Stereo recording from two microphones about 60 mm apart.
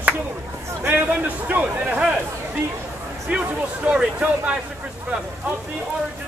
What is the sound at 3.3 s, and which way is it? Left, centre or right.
A man's voice, right.